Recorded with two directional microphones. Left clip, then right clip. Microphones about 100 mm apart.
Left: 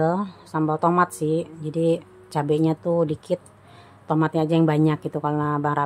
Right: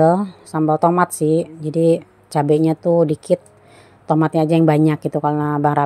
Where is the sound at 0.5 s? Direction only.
40° right (ahead or behind).